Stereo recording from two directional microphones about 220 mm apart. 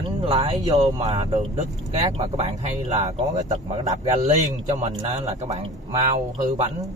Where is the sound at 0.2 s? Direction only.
30° right (ahead or behind).